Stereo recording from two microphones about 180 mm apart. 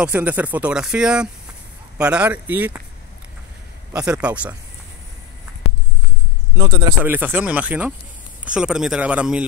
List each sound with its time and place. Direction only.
0.0 s speech: 10° right (ahead or behind)
3.9 s speech: 5° right (ahead or behind)
6.5 s speech: 20° right (ahead or behind)
7.1 s speech: 10° right (ahead or behind)